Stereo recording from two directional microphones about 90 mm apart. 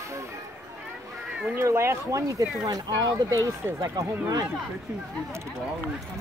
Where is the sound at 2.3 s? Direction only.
40° right (ahead or behind).